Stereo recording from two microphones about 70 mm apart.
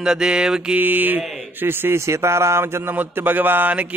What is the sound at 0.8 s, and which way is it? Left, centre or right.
Mantra, right.